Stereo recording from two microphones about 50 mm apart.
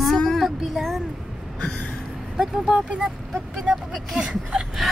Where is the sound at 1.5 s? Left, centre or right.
Centre.